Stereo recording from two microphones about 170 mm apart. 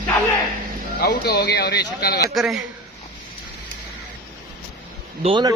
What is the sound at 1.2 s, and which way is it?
Speech, 80° left.